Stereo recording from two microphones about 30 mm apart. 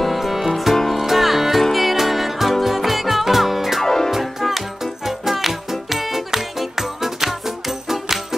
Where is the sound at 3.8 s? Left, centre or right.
Centre.